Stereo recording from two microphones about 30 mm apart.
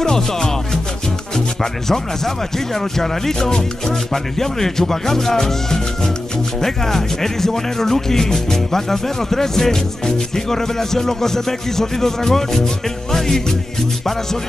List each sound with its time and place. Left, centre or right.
0.0 s music: centre
1.3 s speech: centre